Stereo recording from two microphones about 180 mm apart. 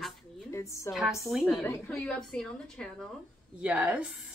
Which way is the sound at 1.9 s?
5° left (ahead or behind).